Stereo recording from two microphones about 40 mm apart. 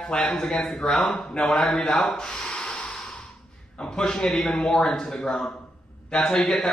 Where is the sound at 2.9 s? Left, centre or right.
Centre.